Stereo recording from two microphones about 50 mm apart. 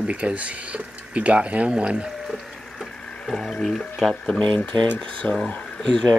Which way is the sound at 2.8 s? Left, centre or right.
Centre.